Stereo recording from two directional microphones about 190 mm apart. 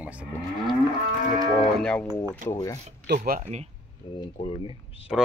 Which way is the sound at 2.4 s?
15° left (ahead or behind).